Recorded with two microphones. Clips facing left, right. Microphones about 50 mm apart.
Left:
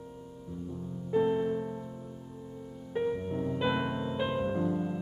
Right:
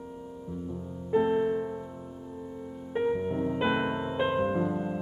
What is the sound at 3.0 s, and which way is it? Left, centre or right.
Music, right.